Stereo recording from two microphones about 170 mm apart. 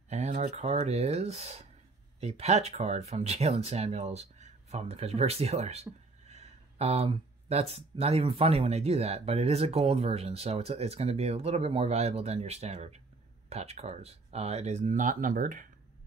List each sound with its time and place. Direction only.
0.1 s speech: 40° right (ahead or behind)